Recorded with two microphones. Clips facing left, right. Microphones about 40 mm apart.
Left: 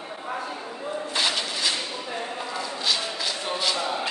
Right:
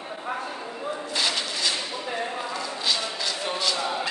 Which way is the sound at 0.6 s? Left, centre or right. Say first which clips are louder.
Even; centre.